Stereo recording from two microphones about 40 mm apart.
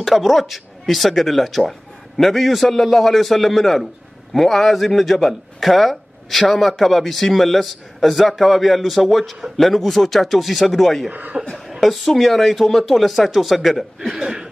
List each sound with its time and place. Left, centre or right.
0.0 s a man's voice: centre
11.1 s speech: right
11.5 s a man's voice: centre
13.9 s speech: centre